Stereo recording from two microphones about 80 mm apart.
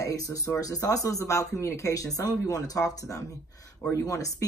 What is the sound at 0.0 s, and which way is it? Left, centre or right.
Speech, left.